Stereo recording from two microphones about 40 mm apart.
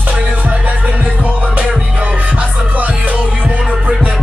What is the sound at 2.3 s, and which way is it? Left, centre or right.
Music, right.